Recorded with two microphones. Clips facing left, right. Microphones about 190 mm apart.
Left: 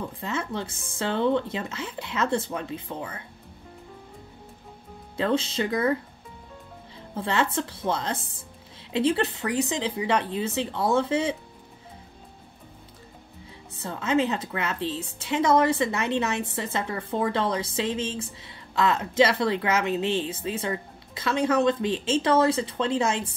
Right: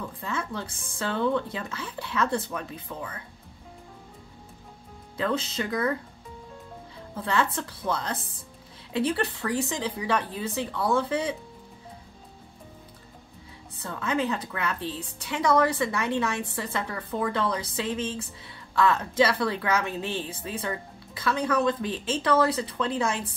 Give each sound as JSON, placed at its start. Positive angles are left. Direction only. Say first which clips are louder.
{"t": 0.0, "sound": "speech", "louder": "left 2 dB", "side_deg": 25}
{"t": 5.1, "sound": "speech", "louder": "left 3 dB", "side_deg": 25}
{"t": 7.2, "sound": "speech", "louder": "left 1 dB", "side_deg": 25}
{"t": 13.8, "sound": "speech", "louder": "left 3 dB", "side_deg": 25}